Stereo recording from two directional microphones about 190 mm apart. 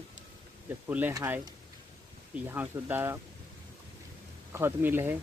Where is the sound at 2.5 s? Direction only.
10° right (ahead or behind).